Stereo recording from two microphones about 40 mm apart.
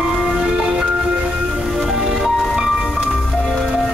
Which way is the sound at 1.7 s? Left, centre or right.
Centre.